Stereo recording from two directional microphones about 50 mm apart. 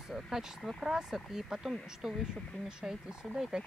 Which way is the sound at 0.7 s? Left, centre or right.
Centre.